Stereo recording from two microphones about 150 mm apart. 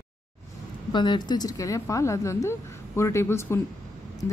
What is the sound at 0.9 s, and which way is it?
A woman's voice, 30° left (ahead or behind).